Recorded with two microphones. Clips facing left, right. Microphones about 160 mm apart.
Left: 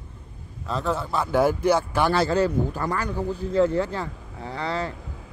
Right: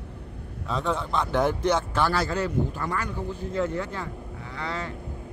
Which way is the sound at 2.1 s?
30° left (ahead or behind).